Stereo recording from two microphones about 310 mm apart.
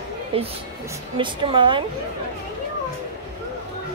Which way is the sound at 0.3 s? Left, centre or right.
Centre.